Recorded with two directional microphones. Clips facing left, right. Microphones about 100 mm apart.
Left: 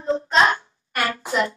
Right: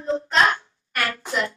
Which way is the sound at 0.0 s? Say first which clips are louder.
Left 2 dB; 20° left (ahead or behind).